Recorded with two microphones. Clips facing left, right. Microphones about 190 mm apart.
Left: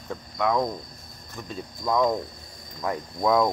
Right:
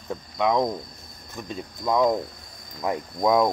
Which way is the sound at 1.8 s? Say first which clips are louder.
Right 2 dB; 15° right (ahead or behind).